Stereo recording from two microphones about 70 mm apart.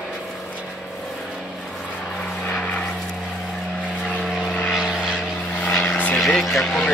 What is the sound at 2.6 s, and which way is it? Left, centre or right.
Vehicle, centre.